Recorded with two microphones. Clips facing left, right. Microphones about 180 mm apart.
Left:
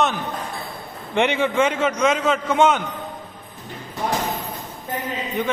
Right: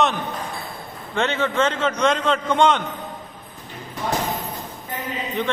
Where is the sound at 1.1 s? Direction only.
15° left (ahead or behind).